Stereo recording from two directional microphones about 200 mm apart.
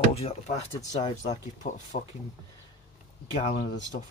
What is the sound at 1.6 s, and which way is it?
Speech, 40° left (ahead or behind).